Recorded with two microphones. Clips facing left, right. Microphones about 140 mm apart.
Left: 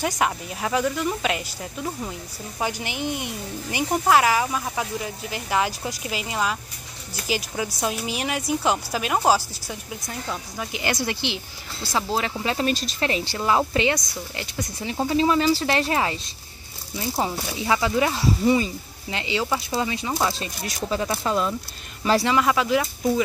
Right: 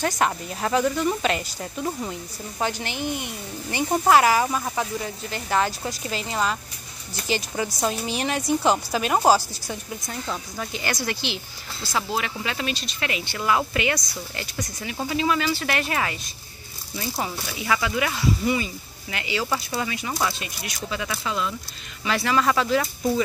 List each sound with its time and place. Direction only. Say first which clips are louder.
0.0 s speech: right 1 dB; 5° left (ahead or behind)
4.1 s speech: right 2 dB; centre (ahead or behind)
10.7 s speech: left 3 dB; 20° left (ahead or behind)
12.1 s speech: left 3 dB; 35° left (ahead or behind)
20.3 s speech: left 4 dB; 35° left (ahead or behind)
22.2 s speech: left 1 dB; 15° left (ahead or behind)